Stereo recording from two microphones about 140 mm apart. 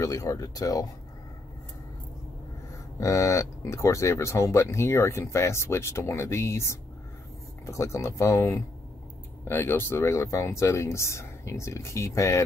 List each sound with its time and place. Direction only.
0.0 s speech: 25° left (ahead or behind)
3.0 s speech: 20° left (ahead or behind)